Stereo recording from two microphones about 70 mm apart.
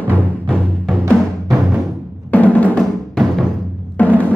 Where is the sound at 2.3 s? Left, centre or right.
Left.